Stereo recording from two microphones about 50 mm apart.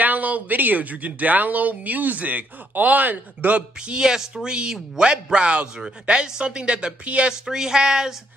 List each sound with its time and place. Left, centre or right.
0.0 s speech: right; by 8.1 s centre